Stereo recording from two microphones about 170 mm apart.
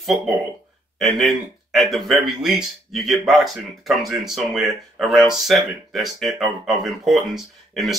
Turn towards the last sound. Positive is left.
turn(degrees=0)  # may be behind; listen again after turning